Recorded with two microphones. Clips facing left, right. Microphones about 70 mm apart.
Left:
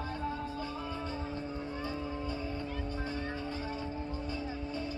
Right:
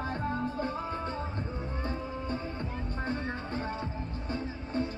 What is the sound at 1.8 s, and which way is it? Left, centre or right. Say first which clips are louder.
Music: right 3 dB; right.